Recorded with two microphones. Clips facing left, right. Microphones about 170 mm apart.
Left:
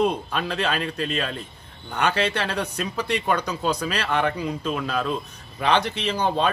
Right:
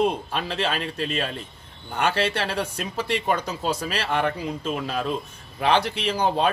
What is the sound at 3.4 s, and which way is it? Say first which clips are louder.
Speech: left 2 dB; 40° right (ahead or behind).